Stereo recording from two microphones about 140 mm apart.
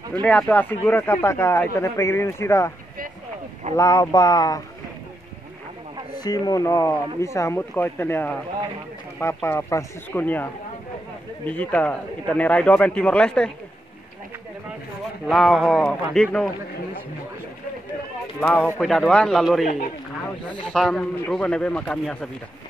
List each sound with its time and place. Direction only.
0.1 s speech: 10° left (ahead or behind)
3.7 s speech: 25° left (ahead or behind)
6.1 s a man's voice: 30° left (ahead or behind); by 13.5 s 5° left (ahead or behind)
15.2 s speech: centre (ahead or behind)
18.4 s a man's voice: 10° left (ahead or behind)
19.6 s speech: 65° left (ahead or behind)
20.6 s a man's voice: 5° left (ahead or behind)